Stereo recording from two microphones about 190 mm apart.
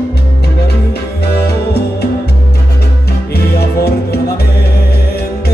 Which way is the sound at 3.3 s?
55° left (ahead or behind).